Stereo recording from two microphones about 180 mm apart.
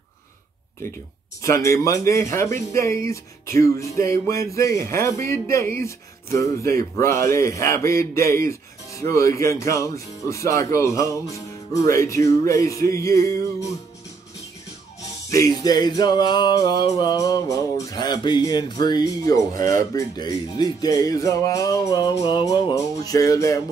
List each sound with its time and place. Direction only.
1.4 s speech: 15° left (ahead or behind)
15.2 s music: 20° left (ahead or behind)